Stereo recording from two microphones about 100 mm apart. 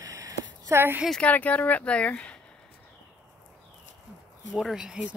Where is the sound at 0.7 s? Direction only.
20° right (ahead or behind).